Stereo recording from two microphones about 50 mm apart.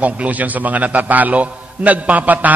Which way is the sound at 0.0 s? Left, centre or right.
Right.